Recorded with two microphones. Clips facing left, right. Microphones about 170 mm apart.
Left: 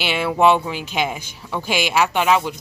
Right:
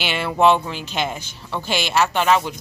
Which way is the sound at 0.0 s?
5° left (ahead or behind).